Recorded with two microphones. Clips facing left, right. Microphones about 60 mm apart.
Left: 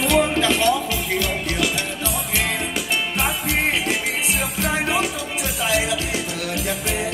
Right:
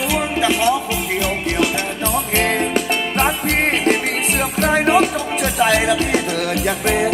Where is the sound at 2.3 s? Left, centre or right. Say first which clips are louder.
Right 7 dB; right.